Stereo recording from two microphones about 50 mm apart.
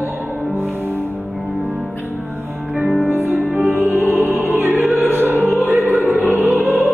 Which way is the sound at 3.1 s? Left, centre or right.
Right.